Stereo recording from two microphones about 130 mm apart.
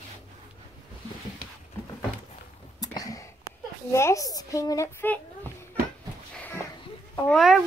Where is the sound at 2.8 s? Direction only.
25° left (ahead or behind).